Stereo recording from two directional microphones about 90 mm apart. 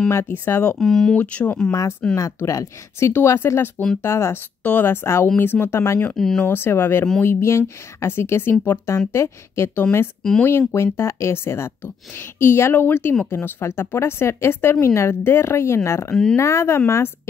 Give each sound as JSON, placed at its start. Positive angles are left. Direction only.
{"t": 0.1, "sound": "a woman's voice", "side_deg": 25}
{"t": 0.7, "sound": "speech", "side_deg": 5}
{"t": 1.1, "sound": "speech", "side_deg": 15}
{"t": 1.7, "sound": "speech", "side_deg": 30}
{"t": 3.1, "sound": "a woman's voice", "side_deg": 25}
{"t": 6.1, "sound": "speech", "side_deg": 5}
{"t": 6.4, "sound": "a woman's voice", "side_deg": 25}
{"t": 10.2, "sound": "speech", "side_deg": 5}
{"t": 10.7, "sound": "a woman's voice", "side_deg": 30}